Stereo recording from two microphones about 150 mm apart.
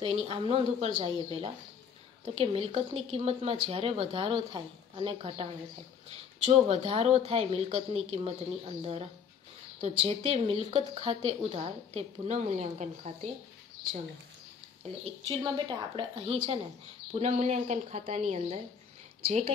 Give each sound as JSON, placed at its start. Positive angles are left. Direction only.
{"t": 0.0, "sound": "a woman's voice", "side_deg": -40}
{"t": 15.2, "sound": "a woman's voice", "side_deg": -30}